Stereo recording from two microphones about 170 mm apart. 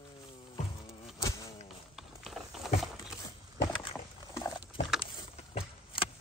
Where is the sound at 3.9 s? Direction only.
20° left (ahead or behind).